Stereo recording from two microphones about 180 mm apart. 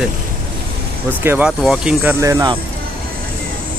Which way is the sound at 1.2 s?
10° right (ahead or behind).